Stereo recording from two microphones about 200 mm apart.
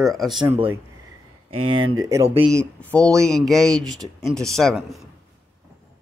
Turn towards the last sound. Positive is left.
turn(degrees=0)  # may be behind; listen again after turning